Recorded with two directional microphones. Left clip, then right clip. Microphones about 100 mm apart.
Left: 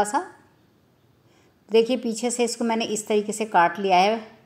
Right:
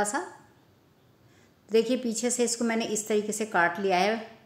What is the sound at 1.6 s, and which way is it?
A woman's voice, 35° left (ahead or behind).